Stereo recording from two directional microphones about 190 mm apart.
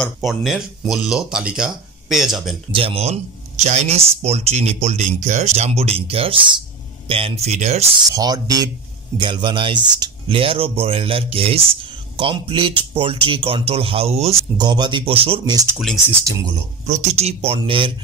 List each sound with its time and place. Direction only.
0.0 s speech: centre (ahead or behind)
2.7 s speech: 30° right (ahead or behind)
8.1 s speech: 20° right (ahead or behind)
14.3 s speech: 20° right (ahead or behind)
16.8 s speech: 35° right (ahead or behind)